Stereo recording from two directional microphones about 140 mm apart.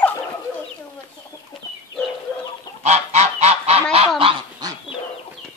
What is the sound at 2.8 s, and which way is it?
Goose, 55° right (ahead or behind).